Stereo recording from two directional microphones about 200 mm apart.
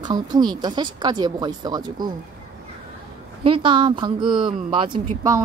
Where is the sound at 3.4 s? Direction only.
25° right (ahead or behind).